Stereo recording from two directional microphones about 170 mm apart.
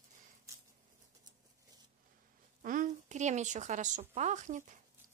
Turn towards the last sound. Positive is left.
turn(degrees=-45)  # may be behind; listen again after turning